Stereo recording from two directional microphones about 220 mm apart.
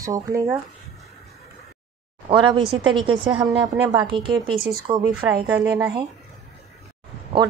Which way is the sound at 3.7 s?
10° right (ahead or behind).